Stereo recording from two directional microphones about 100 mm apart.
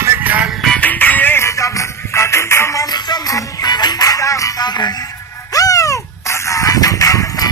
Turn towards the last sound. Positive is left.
turn(degrees=35)  # may be behind; listen again after turning